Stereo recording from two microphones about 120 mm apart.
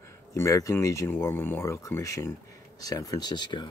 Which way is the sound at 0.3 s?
25° left (ahead or behind).